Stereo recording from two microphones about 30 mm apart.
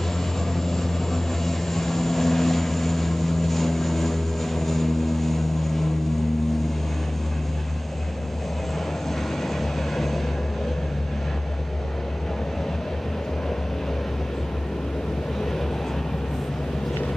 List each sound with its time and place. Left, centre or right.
0.6 s vehicle: centre
9.4 s vehicle: centre